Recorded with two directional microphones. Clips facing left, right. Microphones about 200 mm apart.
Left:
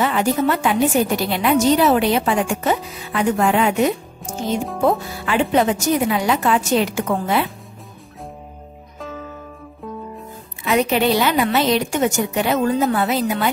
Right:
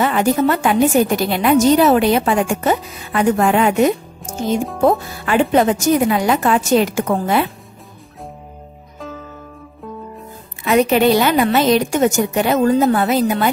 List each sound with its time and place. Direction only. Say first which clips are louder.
0.0 s a woman's voice: right 3 dB; 45° right (ahead or behind)
4.2 s speech: right 3 dB; centre (ahead or behind)
4.8 s a woman's voice: right 3 dB; 50° right (ahead or behind)
10.6 s a woman's voice: right 4 dB; 50° right (ahead or behind)